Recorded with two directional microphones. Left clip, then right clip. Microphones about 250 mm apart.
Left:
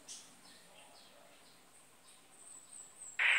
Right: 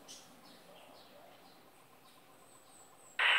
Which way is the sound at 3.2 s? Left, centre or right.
Right.